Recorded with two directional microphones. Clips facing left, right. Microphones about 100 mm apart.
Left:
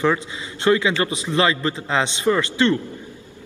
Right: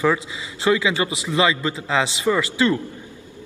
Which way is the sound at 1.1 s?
35° left (ahead or behind).